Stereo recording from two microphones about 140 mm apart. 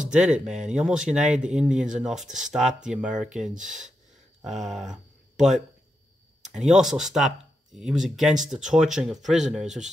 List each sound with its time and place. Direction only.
0.1 s speech: 5° right (ahead or behind)
3.5 s speech: 65° right (ahead or behind)
4.5 s speech: centre (ahead or behind)
6.4 s speech: 5° right (ahead or behind)